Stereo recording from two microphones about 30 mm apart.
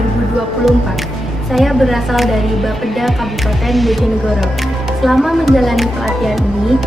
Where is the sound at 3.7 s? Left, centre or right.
Centre.